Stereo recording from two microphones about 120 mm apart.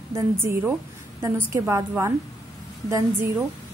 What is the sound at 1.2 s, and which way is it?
Speech, 25° right (ahead or behind).